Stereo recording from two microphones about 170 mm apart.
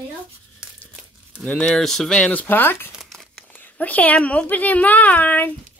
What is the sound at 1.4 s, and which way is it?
Speech, 5° left (ahead or behind).